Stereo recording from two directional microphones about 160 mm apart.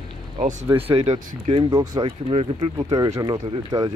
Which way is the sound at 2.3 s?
35° right (ahead or behind).